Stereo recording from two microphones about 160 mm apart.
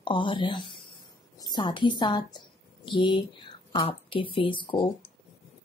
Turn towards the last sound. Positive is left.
turn(degrees=35)  # may be behind; listen again after turning